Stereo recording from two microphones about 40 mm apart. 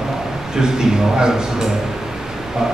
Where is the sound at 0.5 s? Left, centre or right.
Centre.